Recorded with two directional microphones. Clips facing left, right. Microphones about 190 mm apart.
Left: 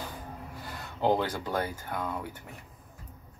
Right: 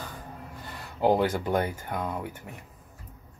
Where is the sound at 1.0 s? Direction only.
15° right (ahead or behind).